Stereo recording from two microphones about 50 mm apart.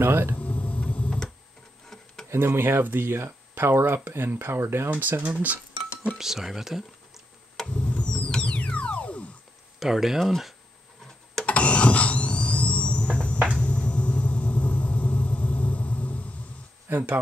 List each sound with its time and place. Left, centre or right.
0.0 s speech: right
0.4 s tick-tock: left
2.3 s speech: right
5.2 s speech: right
6.1 s speech: centre
7.7 s a sound: left
9.8 s speech: centre
11.4 s a sound: left
13.6 s rumble: left
16.9 s speech: right